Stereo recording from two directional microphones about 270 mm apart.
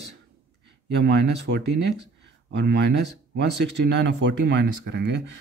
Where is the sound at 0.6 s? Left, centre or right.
Right.